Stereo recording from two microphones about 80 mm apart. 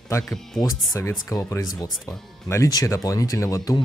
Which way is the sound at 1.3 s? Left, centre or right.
Left.